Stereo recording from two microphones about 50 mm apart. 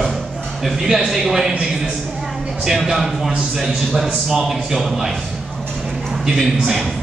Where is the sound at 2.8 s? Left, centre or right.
Centre.